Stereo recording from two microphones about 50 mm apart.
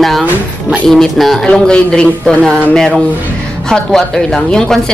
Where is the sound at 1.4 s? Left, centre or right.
Centre.